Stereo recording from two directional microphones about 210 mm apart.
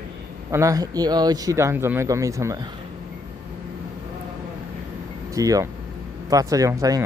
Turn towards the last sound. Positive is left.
turn(degrees=-15)  # may be behind; listen again after turning